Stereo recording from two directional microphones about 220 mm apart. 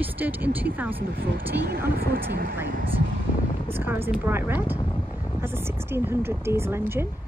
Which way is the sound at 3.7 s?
10° right (ahead or behind).